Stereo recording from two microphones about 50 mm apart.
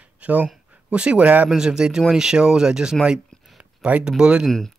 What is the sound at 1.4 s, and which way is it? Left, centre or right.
Speech, centre.